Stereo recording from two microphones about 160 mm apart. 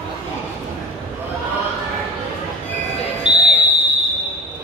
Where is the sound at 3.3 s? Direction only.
40° right (ahead or behind).